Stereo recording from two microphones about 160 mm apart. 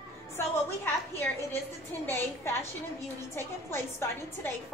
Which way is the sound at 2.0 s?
15° left (ahead or behind).